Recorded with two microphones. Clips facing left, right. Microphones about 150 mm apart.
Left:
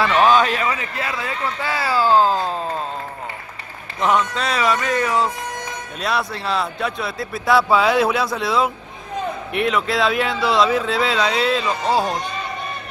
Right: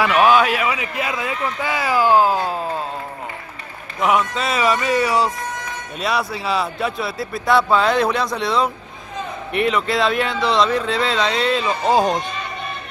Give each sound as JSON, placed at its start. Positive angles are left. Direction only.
{"t": 0.0, "sound": "a man's voice", "side_deg": -10}
{"t": 4.0, "sound": "a man's voice", "side_deg": -5}
{"t": 11.9, "sound": "a man's voice", "side_deg": -20}